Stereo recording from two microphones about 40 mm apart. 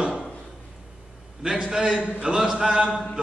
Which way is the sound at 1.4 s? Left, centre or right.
Centre.